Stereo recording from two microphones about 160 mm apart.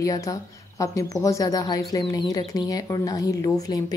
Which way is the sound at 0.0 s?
20° left (ahead or behind).